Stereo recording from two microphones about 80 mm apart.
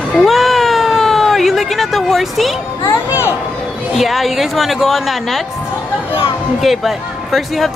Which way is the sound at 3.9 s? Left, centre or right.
Centre.